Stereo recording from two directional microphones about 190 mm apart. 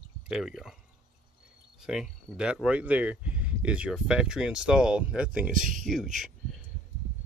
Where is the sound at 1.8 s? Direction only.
5° right (ahead or behind).